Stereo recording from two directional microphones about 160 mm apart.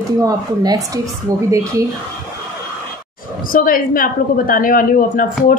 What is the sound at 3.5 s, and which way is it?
A woman's voice, 60° left (ahead or behind).